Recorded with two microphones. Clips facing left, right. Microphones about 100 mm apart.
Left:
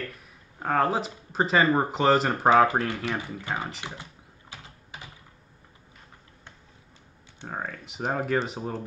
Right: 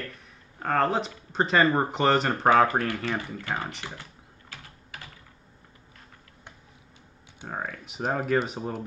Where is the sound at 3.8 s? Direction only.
20° left (ahead or behind).